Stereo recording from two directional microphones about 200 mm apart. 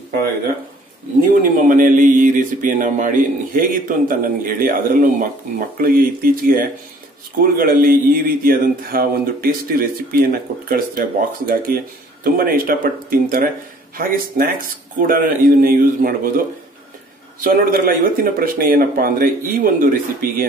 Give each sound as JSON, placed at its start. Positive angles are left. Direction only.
{"t": 1.4, "sound": "speech", "side_deg": -40}